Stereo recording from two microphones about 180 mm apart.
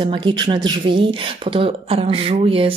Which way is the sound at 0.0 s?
25° right (ahead or behind).